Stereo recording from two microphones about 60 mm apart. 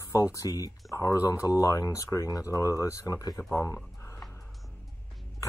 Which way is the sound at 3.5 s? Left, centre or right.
Left.